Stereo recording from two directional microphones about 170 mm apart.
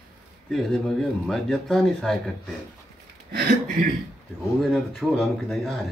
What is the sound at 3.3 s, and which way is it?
Speech, 65° right (ahead or behind).